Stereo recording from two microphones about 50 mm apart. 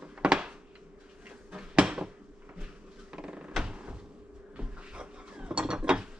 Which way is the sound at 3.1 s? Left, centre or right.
Centre.